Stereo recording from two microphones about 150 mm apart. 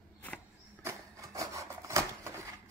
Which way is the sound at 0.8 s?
20° right (ahead or behind).